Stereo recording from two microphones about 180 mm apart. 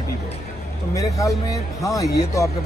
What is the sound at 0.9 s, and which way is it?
Speech, 20° left (ahead or behind).